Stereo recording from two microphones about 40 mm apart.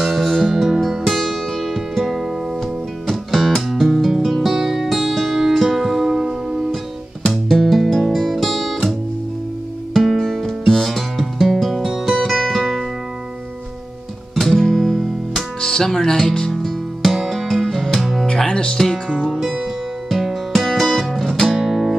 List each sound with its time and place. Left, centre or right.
0.0 s music: centre
3.1 s music: centre
7.4 s music: centre
10.1 s music: centre
14.3 s music: centre
15.6 s music: centre
16.5 s music: centre
18.2 s music: left
19.4 s music: centre
21.5 s music: centre